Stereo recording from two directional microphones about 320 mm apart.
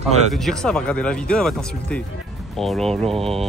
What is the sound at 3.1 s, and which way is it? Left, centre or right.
Speech, centre.